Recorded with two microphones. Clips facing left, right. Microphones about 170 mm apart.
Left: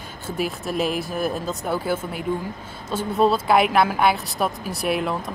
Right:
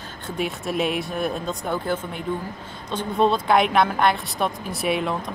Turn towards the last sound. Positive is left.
turn(degrees=0)  # may be behind; listen again after turning